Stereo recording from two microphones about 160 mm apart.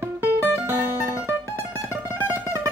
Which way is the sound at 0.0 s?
10° right (ahead or behind).